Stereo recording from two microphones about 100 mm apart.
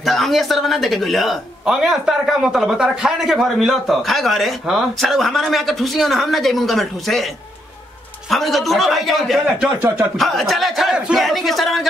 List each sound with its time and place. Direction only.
0.0 s speech: centre (ahead or behind)
8.3 s speech: centre (ahead or behind)
9.8 s speech: 25° right (ahead or behind)
10.1 s speech: centre (ahead or behind)